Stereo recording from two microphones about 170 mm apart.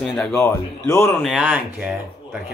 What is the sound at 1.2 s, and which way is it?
Speech, 5° right (ahead or behind).